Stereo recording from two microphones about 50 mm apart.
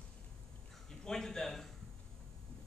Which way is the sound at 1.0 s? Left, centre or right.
Centre.